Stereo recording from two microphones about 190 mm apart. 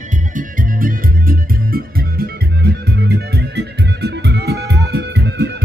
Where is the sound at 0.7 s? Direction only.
50° right (ahead or behind).